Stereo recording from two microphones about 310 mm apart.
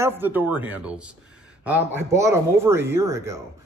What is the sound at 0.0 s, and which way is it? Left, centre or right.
A man's voice, centre.